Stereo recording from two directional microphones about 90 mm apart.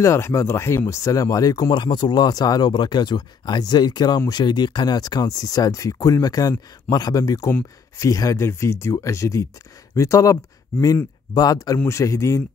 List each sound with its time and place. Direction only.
0.0 s speech: 35° left (ahead or behind)
1.7 s speech: 60° left (ahead or behind); by 12.4 s 35° left (ahead or behind)